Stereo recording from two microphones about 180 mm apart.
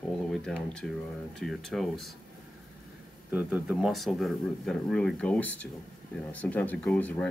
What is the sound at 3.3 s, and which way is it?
Speech, 5° right (ahead or behind).